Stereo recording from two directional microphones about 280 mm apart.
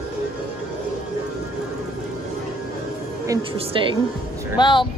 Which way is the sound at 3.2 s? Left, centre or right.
Centre.